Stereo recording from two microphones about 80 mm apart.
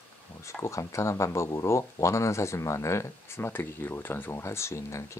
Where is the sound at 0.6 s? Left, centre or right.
Left.